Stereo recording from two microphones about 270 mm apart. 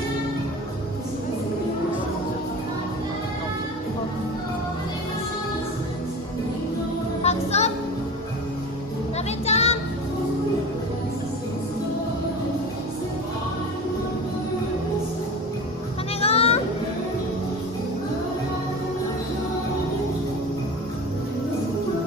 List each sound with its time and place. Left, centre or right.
7.2 s music: left
9.5 s music: left
16.2 s a sound: left